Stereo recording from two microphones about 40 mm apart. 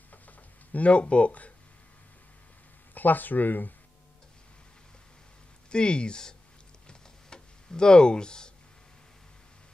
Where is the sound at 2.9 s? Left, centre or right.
Left.